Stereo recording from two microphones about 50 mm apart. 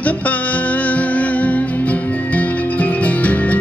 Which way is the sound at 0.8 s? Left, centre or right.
Left.